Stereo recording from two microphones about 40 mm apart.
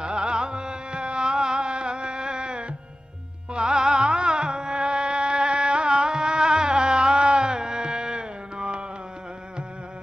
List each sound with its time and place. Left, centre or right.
0.0 s music: right